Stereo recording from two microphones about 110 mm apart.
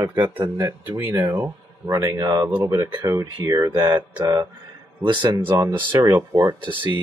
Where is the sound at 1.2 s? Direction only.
30° right (ahead or behind).